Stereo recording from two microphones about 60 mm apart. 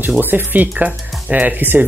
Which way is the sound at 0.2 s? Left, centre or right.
Right.